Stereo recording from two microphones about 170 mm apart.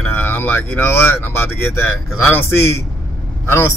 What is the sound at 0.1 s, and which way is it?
Speech, 10° left (ahead or behind).